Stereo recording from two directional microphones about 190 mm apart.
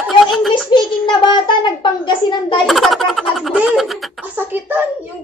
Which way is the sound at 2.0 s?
25° left (ahead or behind).